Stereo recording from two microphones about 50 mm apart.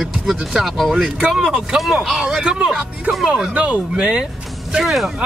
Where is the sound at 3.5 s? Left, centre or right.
Right.